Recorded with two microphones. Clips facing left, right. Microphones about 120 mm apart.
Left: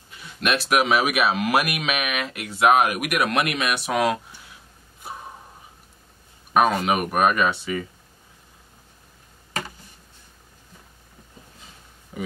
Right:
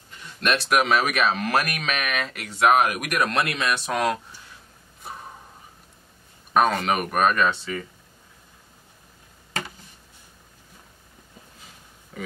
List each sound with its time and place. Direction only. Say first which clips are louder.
0.1 s speech: even; 10° left (ahead or behind)
6.5 s speech: left 1 dB; 10° left (ahead or behind)
12.1 s a sound: left 3 dB; 15° left (ahead or behind)